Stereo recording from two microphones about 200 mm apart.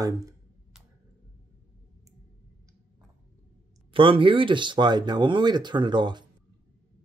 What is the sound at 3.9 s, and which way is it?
Speech, 25° right (ahead or behind).